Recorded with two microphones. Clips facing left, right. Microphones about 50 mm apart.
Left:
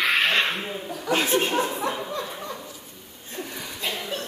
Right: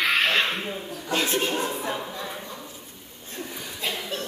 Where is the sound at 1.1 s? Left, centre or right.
Centre.